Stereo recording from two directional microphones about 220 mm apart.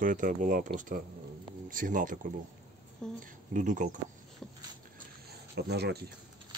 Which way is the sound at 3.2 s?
35° right (ahead or behind).